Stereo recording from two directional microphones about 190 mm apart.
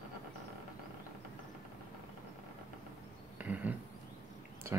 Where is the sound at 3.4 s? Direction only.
10° right (ahead or behind).